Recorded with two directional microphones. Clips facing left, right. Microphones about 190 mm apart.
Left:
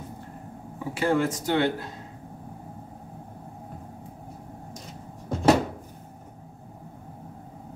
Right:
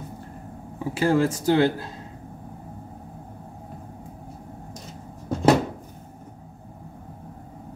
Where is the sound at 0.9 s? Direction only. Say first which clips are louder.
Right 3 dB; 35° right (ahead or behind).